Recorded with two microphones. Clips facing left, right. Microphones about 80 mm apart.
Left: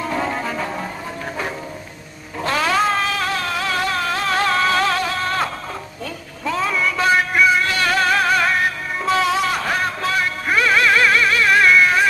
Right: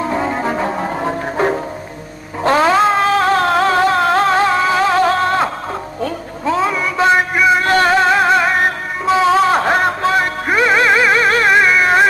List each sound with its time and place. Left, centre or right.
0.4 s brass instrument: right
1.0 s music: right
2.4 s a sound: right
4.4 s music: centre
4.9 s music: right
6.7 s a sound: right
7.5 s music: right
7.9 s music: right
9.3 s music: right
11.2 s music: right
11.5 s a sound: right
11.8 s a sound: right